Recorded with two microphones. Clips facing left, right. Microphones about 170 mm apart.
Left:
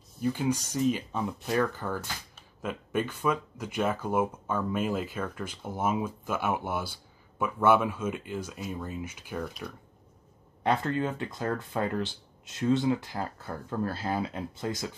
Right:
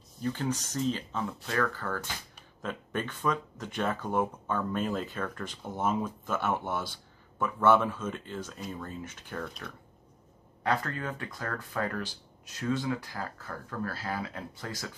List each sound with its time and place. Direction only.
0.2 s speech: 10° left (ahead or behind)
10.6 s speech: 25° left (ahead or behind)